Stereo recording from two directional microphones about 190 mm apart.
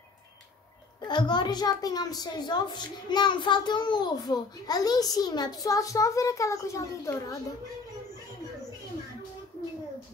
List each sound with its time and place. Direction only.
1.0 s a woman's voice: 25° left (ahead or behind)